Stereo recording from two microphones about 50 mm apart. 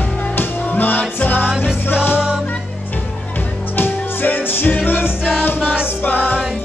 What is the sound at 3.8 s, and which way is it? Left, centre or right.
Music, left.